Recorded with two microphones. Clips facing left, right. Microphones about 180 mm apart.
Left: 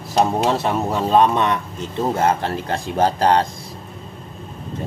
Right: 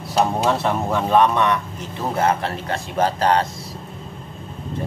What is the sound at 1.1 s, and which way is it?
A man's voice, 25° left (ahead or behind).